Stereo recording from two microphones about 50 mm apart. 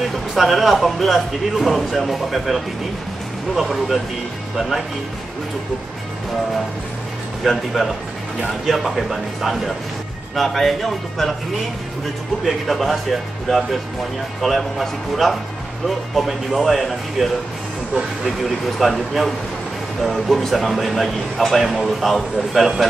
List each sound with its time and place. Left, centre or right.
0.4 s speech: centre
7.4 s speech: centre
12.4 s speech: centre
18.4 s speech: centre